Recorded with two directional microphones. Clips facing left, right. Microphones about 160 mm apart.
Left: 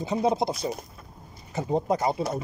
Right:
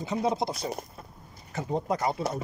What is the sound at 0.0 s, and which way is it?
Speech, 25° left (ahead or behind).